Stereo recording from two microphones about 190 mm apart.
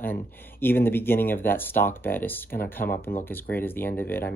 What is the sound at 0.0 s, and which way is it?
Speech, 10° left (ahead or behind).